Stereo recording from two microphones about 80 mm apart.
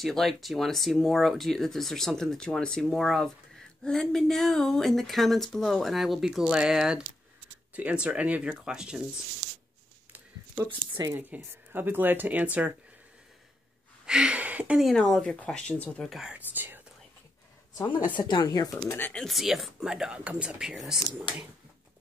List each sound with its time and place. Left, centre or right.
0.0 s speech: centre
11.1 s speech: right
14.0 s a sound: centre
14.8 s speech: centre
16.1 s speech: centre
16.3 s speech: right
18.2 s speech: left
18.9 s speech: left
19.1 s speech: centre